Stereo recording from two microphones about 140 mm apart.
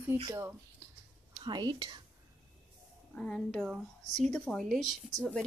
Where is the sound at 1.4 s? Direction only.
30° right (ahead or behind).